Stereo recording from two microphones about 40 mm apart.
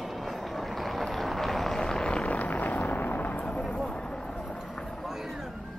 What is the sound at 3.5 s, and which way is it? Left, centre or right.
Vehicle, centre.